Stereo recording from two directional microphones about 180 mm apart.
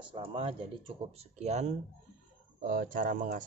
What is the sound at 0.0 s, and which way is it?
Speech, 30° right (ahead or behind).